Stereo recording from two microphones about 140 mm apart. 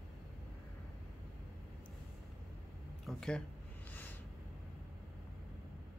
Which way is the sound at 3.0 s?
5° left (ahead or behind).